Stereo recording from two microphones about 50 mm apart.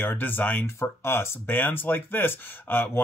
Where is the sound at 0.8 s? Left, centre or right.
Left.